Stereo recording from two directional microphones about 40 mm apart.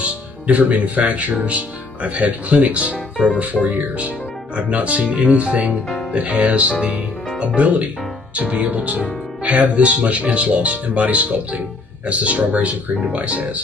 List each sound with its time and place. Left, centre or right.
0.0 s speech: right
3.6 s speech: centre
4.8 s speech: right
6.3 s speech: right